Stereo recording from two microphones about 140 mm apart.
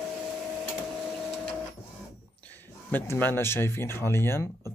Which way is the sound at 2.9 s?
15° left (ahead or behind).